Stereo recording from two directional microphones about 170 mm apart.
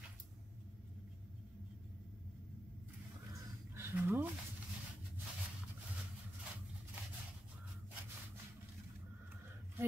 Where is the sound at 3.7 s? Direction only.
15° right (ahead or behind).